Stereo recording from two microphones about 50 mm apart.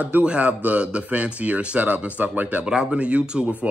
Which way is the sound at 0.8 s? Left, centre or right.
Right.